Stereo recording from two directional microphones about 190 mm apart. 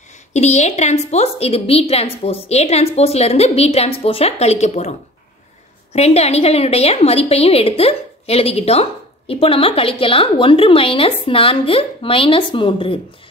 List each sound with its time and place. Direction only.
0.3 s a woman's voice: 35° left (ahead or behind)
5.9 s a woman's voice: 35° left (ahead or behind)